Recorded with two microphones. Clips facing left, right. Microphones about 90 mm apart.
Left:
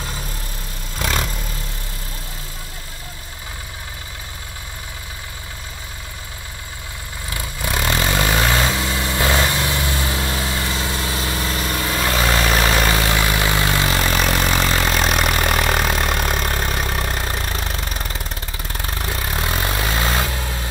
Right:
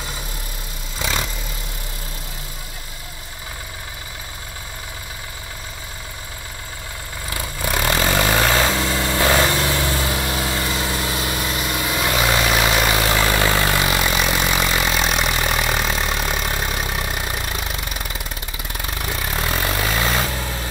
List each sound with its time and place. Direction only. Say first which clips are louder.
0.9 s vehicle: left 2 dB; centre (ahead or behind)
7.7 s vehicle: right 1 dB; 25° right (ahead or behind)
12.9 s vehicle: right 1 dB; 25° right (ahead or behind)
14.2 s vehicle: left 1 dB; 5° right (ahead or behind)
17.4 s vehicle: left 1 dB; 35° left (ahead or behind)
20.2 s vehicle: even; 25° right (ahead or behind)